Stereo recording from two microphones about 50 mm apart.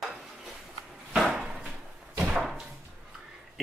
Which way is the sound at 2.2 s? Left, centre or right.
Centre.